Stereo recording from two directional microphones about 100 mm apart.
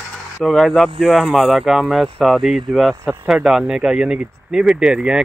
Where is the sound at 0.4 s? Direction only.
Centre (ahead or behind).